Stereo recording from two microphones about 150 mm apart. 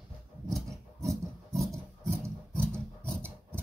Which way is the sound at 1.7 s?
20° right (ahead or behind).